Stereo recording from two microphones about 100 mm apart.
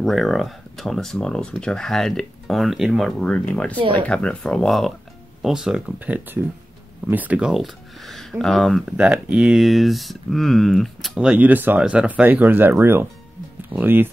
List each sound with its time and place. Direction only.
0.0 s speech: centre (ahead or behind)
8.8 s speech: 10° right (ahead or behind)
9.6 s speech: centre (ahead or behind)
11.1 s speech: 15° right (ahead or behind)